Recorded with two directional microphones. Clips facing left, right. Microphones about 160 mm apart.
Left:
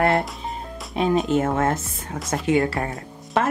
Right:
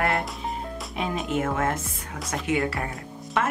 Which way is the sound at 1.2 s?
30° left (ahead or behind).